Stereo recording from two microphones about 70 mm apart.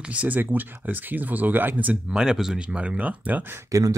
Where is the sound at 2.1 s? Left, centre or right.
Centre.